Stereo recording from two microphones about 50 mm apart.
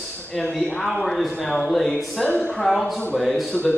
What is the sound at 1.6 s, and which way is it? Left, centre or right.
Speech, centre.